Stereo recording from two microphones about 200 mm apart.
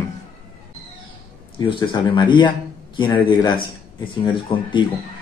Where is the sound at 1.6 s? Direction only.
25° left (ahead or behind).